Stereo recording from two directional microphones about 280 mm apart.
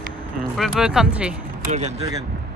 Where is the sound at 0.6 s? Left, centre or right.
Centre.